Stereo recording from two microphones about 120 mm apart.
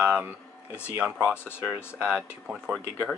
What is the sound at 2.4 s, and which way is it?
Speech, 5° right (ahead or behind).